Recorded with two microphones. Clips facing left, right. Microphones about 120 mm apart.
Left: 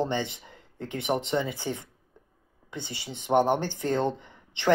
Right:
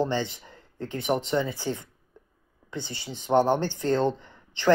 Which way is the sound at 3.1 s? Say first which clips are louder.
Right 1 dB; 20° left (ahead or behind).